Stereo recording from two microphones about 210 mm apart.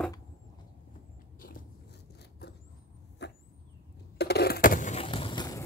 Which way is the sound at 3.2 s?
55° left (ahead or behind).